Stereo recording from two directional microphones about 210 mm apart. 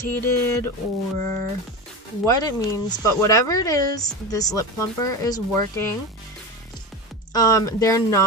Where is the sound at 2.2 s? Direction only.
15° left (ahead or behind).